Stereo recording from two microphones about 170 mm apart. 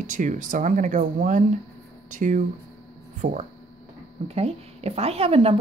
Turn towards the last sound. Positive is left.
turn(degrees=-35)  # may be behind; listen again after turning